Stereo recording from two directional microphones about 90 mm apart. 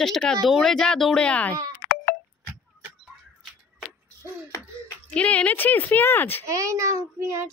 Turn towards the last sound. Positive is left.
turn(degrees=-35)  # may be behind; listen again after turning